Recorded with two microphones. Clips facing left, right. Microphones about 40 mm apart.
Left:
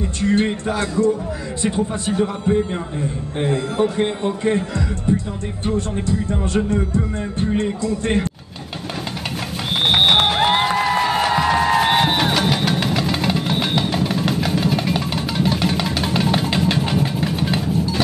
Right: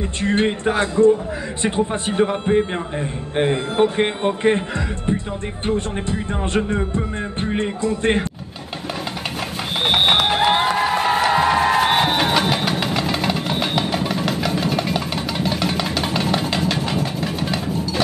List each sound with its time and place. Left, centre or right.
0.2 s a man's voice: right
10.1 s music: left
11.3 s music: right
12.4 s vehicle: centre
13.1 s music: centre
16.4 s music: centre